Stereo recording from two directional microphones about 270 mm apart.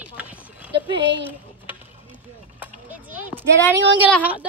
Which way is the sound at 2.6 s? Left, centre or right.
Centre.